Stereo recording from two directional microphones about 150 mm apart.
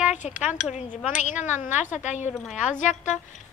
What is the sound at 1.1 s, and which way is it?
A woman's voice, 55° left (ahead or behind).